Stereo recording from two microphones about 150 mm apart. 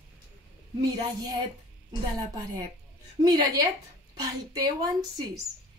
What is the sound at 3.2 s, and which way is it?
Speech, 25° right (ahead or behind).